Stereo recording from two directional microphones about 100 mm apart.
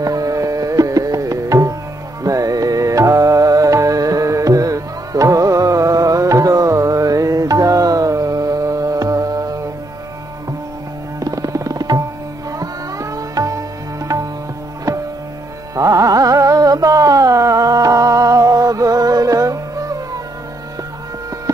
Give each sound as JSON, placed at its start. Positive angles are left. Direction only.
{"t": 0.0, "sound": "tabla", "side_deg": -40}
{"t": 2.2, "sound": "music", "side_deg": -35}
{"t": 11.1, "sound": "tabla", "side_deg": -35}
{"t": 14.9, "sound": "music", "side_deg": -35}
{"t": 15.7, "sound": "carnatic music", "side_deg": -35}